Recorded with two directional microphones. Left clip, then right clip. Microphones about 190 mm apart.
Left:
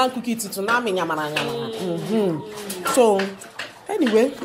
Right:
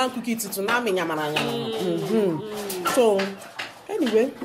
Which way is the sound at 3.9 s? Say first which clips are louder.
Left 3 dB; 20° left (ahead or behind).